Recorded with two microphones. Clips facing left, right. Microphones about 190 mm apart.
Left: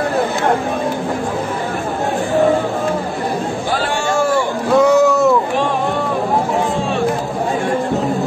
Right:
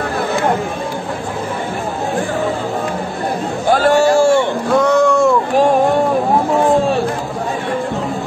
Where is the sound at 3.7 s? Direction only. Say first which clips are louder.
Right 11 dB; 40° right (ahead or behind).